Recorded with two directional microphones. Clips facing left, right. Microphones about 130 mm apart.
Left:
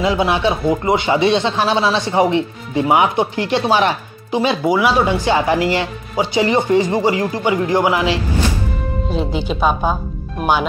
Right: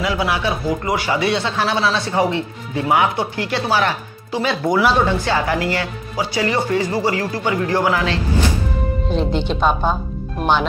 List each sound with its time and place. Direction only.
0.0 s speech: 25° left (ahead or behind)
4.6 s speech: 5° left (ahead or behind)
5.0 s speech: 15° left (ahead or behind)
9.1 s speech: 5° left (ahead or behind)